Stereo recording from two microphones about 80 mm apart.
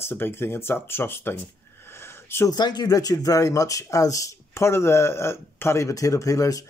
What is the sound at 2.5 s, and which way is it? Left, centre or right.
Speech, left.